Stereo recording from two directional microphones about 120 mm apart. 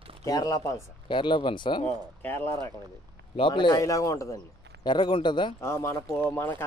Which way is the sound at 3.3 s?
45° left (ahead or behind).